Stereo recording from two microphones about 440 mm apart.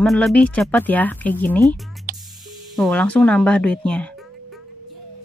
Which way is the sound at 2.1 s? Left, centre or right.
Centre.